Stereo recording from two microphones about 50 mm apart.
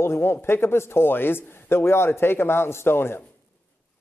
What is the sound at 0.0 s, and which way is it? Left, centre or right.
A man's voice, left.